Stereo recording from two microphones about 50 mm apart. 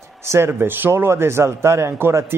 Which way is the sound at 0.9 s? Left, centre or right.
Right.